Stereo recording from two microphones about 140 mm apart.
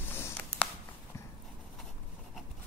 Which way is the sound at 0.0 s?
15° left (ahead or behind).